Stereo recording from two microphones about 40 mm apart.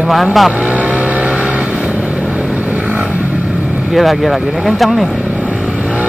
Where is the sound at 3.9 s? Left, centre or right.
Centre.